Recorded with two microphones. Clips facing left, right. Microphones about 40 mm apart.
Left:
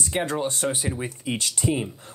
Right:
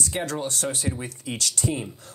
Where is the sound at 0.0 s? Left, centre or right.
Left.